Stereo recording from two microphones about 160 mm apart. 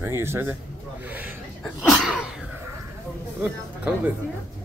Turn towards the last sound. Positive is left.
turn(degrees=-10)  # may be behind; listen again after turning